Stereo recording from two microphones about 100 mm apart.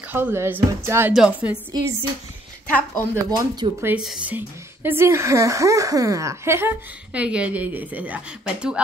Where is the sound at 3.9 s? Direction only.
10° right (ahead or behind).